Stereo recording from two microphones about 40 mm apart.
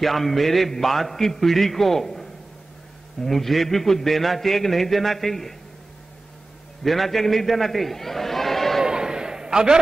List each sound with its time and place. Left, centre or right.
0.0 s a man's voice: centre
6.8 s a man's voice: centre
8.8 s a sound: centre